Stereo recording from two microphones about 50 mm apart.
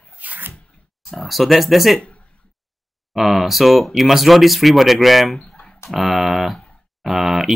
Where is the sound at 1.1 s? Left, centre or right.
Centre.